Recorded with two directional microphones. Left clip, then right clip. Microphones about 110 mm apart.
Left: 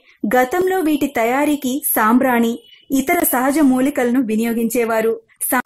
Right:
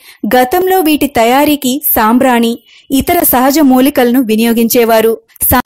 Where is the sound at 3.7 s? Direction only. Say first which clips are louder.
Right 8 dB; 55° right (ahead or behind).